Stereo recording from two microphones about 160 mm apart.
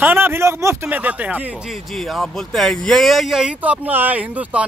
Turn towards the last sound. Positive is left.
turn(degrees=-10)  # may be behind; listen again after turning